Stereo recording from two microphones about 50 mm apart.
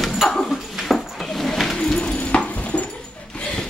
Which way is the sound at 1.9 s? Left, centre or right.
Left.